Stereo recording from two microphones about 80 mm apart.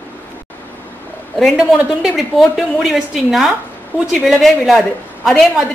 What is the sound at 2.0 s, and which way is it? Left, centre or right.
A woman's voice, centre.